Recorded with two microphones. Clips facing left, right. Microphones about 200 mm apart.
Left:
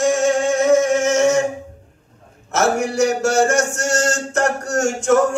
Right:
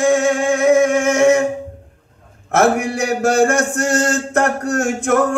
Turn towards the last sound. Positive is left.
turn(degrees=-55)  # may be behind; listen again after turning